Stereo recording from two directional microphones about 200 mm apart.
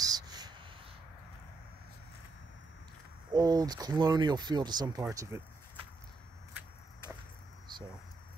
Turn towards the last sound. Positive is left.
turn(degrees=-25)  # may be behind; listen again after turning